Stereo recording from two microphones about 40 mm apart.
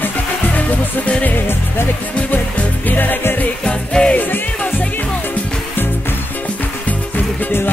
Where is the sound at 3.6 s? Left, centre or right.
Left.